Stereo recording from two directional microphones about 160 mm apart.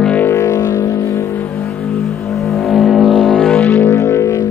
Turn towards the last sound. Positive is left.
turn(degrees=20)  # may be behind; listen again after turning